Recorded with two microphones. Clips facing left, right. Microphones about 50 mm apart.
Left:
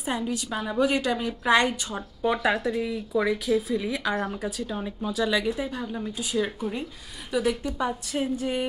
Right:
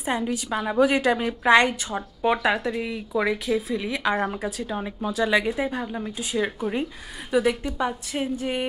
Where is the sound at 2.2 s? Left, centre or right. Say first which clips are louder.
Right 2 dB; right.